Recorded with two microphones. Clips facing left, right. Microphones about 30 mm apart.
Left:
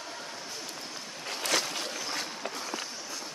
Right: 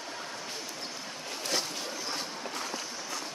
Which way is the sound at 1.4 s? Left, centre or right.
Left.